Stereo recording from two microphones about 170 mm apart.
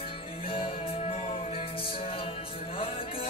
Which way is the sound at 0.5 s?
30° left (ahead or behind).